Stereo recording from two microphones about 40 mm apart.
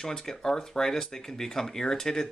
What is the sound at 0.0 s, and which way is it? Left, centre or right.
Speech, centre.